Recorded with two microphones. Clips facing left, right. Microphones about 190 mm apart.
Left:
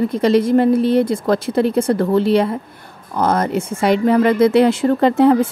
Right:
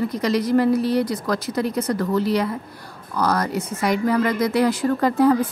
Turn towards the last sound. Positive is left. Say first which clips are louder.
# left 5 dB
turn(degrees=25)  # may be behind; listen again after turning